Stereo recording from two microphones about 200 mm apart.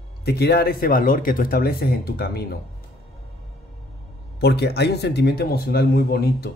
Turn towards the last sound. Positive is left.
turn(degrees=50)  # may be behind; listen again after turning